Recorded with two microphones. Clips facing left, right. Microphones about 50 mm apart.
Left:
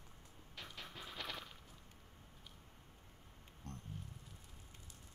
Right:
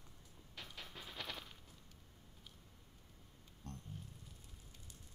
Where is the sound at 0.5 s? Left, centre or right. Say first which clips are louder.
Left 1 dB; centre.